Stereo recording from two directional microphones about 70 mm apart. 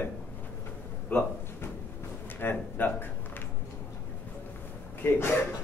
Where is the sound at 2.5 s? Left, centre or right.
Left.